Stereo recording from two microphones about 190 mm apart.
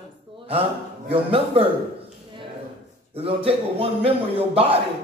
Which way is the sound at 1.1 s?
30° right (ahead or behind).